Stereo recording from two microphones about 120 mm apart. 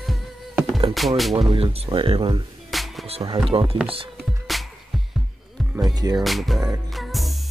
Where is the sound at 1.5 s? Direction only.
55° right (ahead or behind).